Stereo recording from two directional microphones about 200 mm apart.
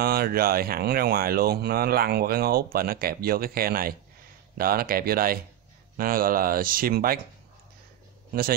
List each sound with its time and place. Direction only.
0.0 s speech: 50° right (ahead or behind)